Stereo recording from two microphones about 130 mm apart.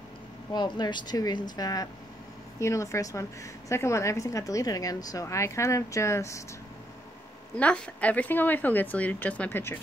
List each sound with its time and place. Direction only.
0.5 s a woman's voice: 35° left (ahead or behind)
7.5 s speech: 10° left (ahead or behind)